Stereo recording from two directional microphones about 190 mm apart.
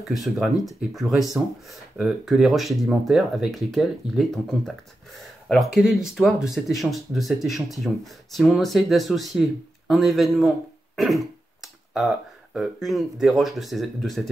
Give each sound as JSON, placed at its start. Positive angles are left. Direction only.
{"t": 0.0, "sound": "speech", "side_deg": 0}